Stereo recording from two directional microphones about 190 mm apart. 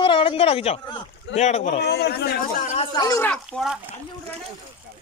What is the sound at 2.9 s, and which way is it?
Speech, 15° left (ahead or behind).